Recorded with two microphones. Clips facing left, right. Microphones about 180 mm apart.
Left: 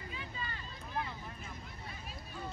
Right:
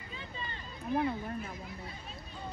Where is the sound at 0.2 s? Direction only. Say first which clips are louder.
Right 3 dB; 25° right (ahead or behind).